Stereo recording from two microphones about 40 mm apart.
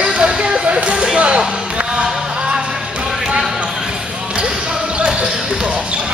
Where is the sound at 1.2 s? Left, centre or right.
Right.